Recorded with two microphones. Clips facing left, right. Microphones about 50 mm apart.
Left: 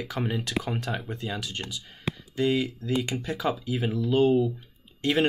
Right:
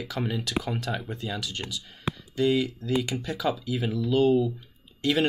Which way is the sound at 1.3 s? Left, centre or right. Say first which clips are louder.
Right 1 dB; left.